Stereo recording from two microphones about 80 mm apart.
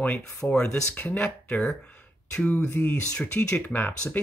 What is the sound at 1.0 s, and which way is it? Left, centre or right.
Speech, left.